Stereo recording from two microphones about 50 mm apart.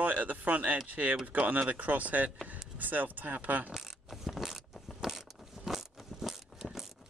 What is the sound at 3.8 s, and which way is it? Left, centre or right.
Biting, centre.